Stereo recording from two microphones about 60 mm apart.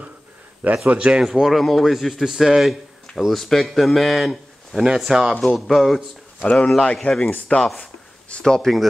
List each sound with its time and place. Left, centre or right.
0.8 s speech: right
1.2 s a man's voice: centre
5.3 s a man's voice: centre
6.7 s speech: centre